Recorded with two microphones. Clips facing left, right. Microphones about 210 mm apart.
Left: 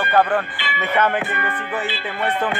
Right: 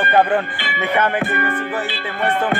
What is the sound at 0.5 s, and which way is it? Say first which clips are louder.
Music: right 2 dB; 55° right (ahead or behind).